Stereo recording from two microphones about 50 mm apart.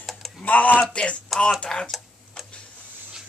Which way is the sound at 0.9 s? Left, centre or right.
Left.